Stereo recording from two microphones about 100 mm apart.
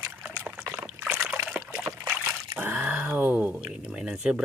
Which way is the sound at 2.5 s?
15° right (ahead or behind).